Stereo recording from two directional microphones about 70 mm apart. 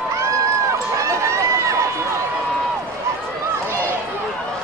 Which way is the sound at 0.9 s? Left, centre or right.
Right.